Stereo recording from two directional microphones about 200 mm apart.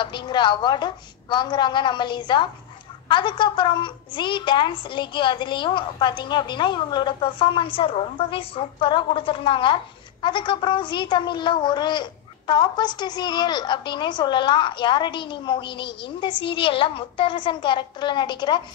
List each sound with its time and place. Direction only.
0.0 s speech: 25° left (ahead or behind)